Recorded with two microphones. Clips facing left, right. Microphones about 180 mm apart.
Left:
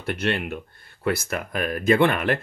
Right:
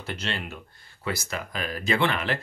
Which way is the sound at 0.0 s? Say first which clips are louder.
Left 7 dB; 60° left (ahead or behind).